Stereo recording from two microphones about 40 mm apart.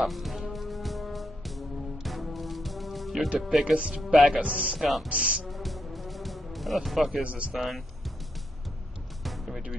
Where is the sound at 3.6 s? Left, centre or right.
Right.